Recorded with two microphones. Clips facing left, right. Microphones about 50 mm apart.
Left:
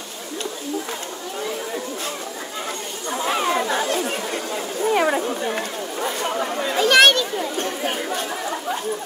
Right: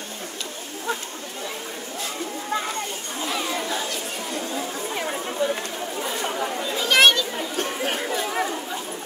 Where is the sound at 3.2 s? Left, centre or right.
Left.